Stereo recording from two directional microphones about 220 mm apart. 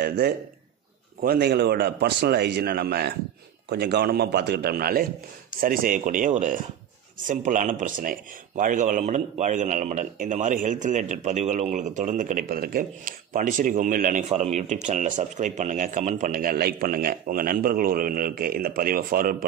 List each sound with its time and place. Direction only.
1.2 s a man's voice: 45° right (ahead or behind)